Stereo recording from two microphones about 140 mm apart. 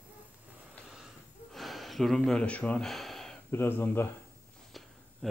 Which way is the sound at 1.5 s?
Centre (ahead or behind).